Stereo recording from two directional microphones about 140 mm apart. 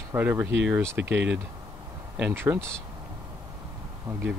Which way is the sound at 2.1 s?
15° right (ahead or behind).